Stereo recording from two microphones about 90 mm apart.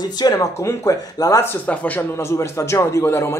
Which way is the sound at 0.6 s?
35° left (ahead or behind).